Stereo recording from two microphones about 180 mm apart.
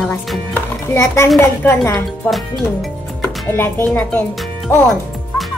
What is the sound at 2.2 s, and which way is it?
Speech, centre (ahead or behind).